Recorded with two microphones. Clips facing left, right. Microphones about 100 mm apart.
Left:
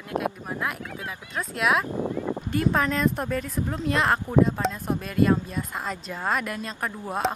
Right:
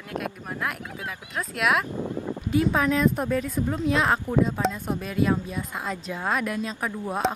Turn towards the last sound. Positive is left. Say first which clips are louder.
# right 1 dB
turn(degrees=0)  # may be behind; listen again after turning